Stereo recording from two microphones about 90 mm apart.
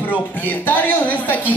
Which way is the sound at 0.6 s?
20° left (ahead or behind).